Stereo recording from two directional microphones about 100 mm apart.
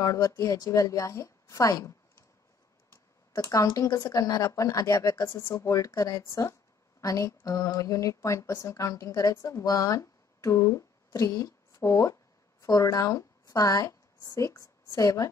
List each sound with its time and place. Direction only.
0.0 s a woman's voice: 35° left (ahead or behind)
2.9 s a sound: 30° left (ahead or behind)
4.1 s a woman's voice: 35° left (ahead or behind)